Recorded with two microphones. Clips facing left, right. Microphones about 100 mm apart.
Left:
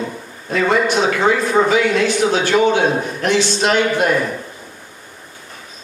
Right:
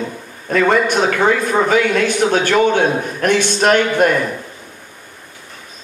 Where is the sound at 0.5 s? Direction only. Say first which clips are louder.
Right 2 dB; 55° right (ahead or behind).